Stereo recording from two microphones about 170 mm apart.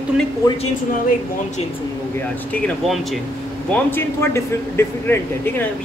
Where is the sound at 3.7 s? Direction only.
10° left (ahead or behind).